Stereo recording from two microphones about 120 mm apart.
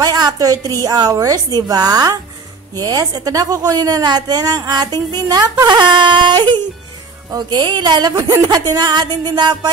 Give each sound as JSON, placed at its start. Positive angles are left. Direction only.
{"t": 0.0, "sound": "a woman's voice", "side_deg": -30}